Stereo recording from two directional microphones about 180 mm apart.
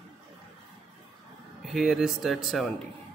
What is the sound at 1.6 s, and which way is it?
Speech, centre (ahead or behind).